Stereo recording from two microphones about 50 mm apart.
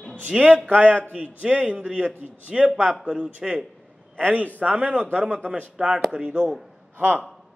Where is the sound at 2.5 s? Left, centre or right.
Centre.